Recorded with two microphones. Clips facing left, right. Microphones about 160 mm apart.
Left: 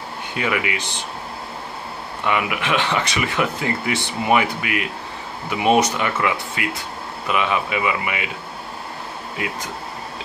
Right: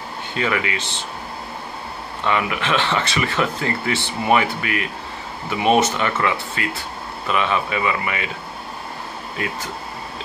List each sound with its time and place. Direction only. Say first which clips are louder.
0.3 s speech: even; 15° left (ahead or behind)
2.2 s speech: even; 15° left (ahead or behind)